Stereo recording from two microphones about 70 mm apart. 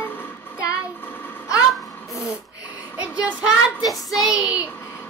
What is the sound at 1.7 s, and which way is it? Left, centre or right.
Babbling, centre.